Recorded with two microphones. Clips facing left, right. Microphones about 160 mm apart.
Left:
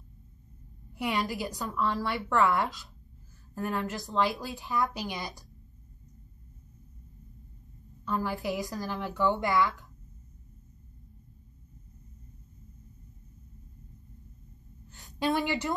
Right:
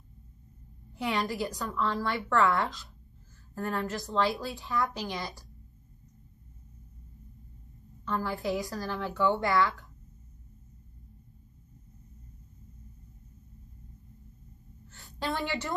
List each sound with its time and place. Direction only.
0.9 s a woman's voice: 15° left (ahead or behind)
8.0 s a woman's voice: 10° left (ahead or behind)
14.9 s a sound: 15° left (ahead or behind)